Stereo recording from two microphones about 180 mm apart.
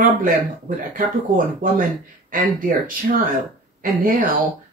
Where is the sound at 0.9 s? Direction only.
50° right (ahead or behind).